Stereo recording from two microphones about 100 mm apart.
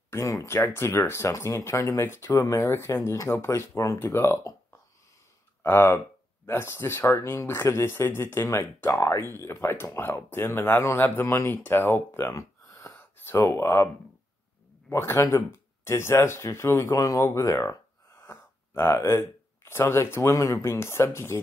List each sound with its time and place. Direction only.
0.1 s speech: 30° left (ahead or behind)
5.6 s speech: 20° left (ahead or behind)
14.9 s speech: 30° left (ahead or behind)